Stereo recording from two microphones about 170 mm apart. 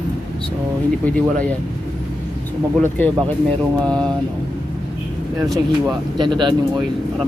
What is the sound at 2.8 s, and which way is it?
Speech, 5° left (ahead or behind).